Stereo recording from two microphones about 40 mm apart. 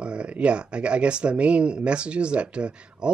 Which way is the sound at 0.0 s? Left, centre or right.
Right.